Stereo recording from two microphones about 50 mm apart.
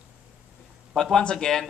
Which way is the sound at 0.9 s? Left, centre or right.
Centre.